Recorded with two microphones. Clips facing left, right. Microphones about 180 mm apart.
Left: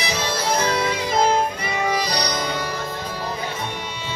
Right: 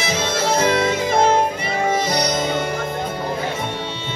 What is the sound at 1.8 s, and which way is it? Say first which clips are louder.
Music: right 4 dB; 25° right (ahead or behind).